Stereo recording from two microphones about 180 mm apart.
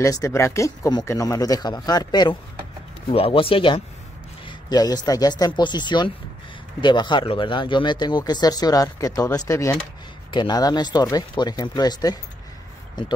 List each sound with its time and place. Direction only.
0.0 s speech: 20° left (ahead or behind)